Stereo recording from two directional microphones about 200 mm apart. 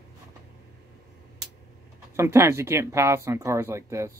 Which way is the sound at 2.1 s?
15° right (ahead or behind).